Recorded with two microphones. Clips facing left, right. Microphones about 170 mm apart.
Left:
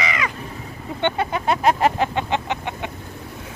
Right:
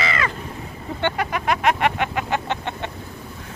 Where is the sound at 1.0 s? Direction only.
25° left (ahead or behind).